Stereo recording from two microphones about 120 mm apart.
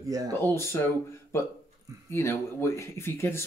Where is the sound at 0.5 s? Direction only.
20° left (ahead or behind).